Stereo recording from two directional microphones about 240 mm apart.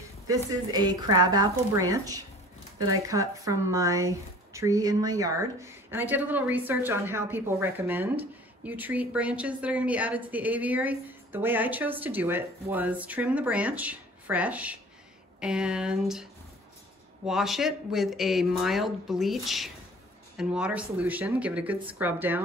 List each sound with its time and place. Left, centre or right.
0.7 s a woman's voice: centre
17.3 s a woman's voice: centre